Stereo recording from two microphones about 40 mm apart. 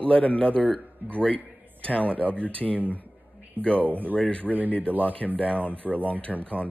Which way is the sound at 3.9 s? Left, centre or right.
Right.